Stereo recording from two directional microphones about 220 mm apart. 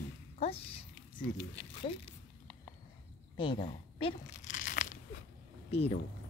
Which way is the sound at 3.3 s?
20° left (ahead or behind).